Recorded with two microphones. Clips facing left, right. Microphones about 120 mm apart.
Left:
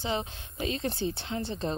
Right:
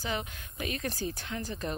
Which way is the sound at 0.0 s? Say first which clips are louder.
Left 3 dB; 30° left (ahead or behind).